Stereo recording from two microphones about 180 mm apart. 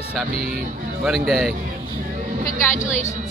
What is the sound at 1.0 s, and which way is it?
Speech, centre (ahead or behind).